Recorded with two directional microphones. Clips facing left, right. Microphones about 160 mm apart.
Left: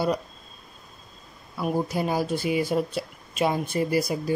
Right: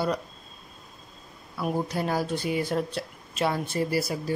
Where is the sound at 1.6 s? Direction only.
10° left (ahead or behind).